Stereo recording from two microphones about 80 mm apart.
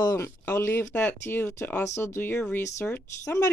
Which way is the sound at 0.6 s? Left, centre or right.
Left.